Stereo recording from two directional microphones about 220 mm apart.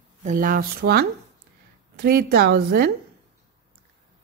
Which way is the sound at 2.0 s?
45° right (ahead or behind).